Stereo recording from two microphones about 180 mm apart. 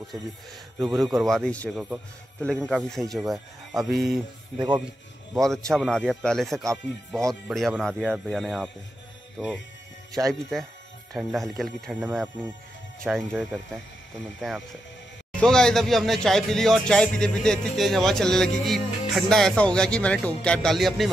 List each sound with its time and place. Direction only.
0.7 s speech: centre (ahead or behind)
4.6 s speech: 25° right (ahead or behind)
5.3 s speech: centre (ahead or behind)
10.1 s speech: centre (ahead or behind)